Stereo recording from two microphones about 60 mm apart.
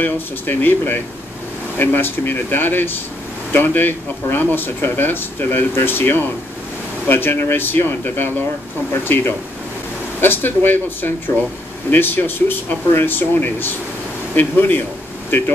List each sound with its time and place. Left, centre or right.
0.0 s speech: left